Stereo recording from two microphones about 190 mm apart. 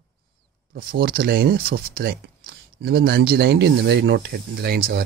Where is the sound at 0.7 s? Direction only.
50° right (ahead or behind).